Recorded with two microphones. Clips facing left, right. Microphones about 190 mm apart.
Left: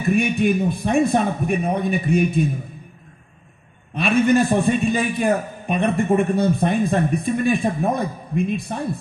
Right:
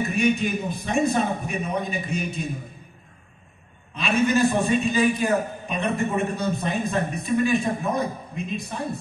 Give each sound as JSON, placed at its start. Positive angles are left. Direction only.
{"t": 0.1, "sound": "a man's voice", "side_deg": 55}
{"t": 3.9, "sound": "a man's voice", "side_deg": 55}